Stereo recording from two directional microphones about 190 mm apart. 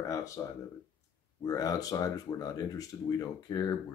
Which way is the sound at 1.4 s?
20° left (ahead or behind).